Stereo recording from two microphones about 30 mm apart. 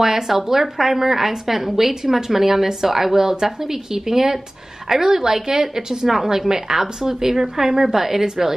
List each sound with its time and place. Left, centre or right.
0.0 s speech: centre